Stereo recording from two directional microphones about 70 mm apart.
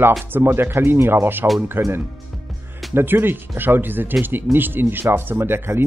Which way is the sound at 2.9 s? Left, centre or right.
Right.